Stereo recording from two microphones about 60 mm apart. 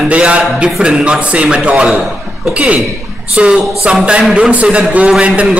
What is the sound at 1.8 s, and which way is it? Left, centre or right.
Speech, centre.